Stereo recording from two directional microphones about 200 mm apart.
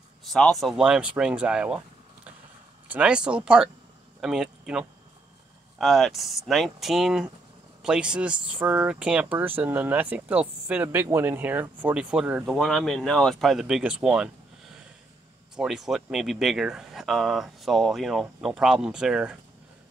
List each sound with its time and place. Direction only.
0.2 s speech: centre (ahead or behind)
2.9 s speech: 5° right (ahead or behind)
15.5 s speech: centre (ahead or behind)